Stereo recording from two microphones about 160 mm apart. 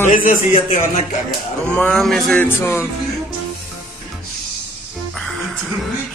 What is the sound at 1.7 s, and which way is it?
Music, 5° left (ahead or behind).